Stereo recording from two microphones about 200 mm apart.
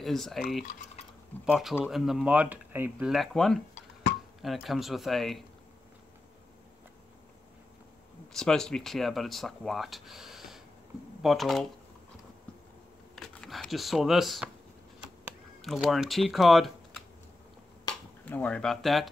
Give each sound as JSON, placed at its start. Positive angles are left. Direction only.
{"t": 0.0, "sound": "speech", "side_deg": 0}
{"t": 0.7, "sound": "speech", "side_deg": 40}
{"t": 1.4, "sound": "speech", "side_deg": 0}
{"t": 8.3, "sound": "speech", "side_deg": 0}
{"t": 13.1, "sound": "shuffling cards", "side_deg": 0}
{"t": 15.0, "sound": "typing", "side_deg": -5}
{"t": 18.2, "sound": "speech", "side_deg": 5}